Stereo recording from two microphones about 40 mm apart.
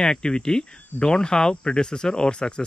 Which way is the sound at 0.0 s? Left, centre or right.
Centre.